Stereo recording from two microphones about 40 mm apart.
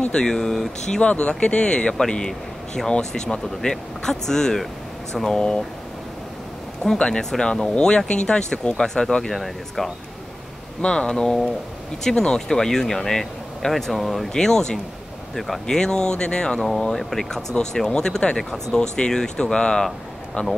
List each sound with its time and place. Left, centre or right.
0.1 s speech: centre
1.0 s speech: left
6.8 s speech: centre
9.3 s speech: centre
10.8 s speech: left; by 14.2 s centre
14.3 s speech: centre
15.3 s speech: centre
15.6 s speech: centre
16.8 s speech: centre
18.4 s speech: centre
18.8 s speech: centre
20.4 s a man's voice: left